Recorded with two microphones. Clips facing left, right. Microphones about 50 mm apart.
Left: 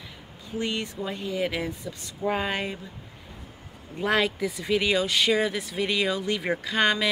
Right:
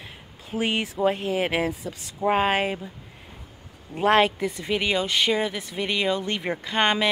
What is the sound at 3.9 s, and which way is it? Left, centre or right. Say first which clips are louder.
Speech: right 5 dB; right.